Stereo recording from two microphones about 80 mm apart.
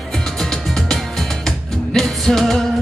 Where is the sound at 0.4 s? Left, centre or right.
Centre.